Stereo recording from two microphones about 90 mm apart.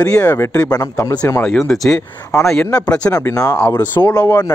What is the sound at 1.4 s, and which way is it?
Speech, 5° left (ahead or behind).